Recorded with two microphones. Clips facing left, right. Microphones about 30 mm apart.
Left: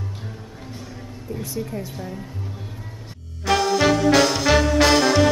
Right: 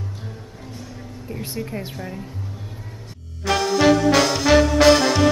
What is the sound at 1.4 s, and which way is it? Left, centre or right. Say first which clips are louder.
Speech: even; right.